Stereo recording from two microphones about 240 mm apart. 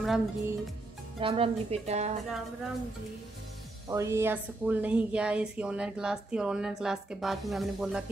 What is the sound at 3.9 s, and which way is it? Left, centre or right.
Speech, centre.